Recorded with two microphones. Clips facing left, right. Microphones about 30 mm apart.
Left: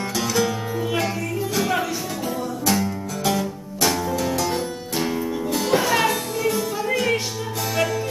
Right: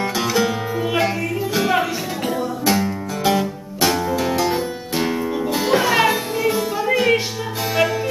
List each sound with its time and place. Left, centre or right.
0.2 s music: right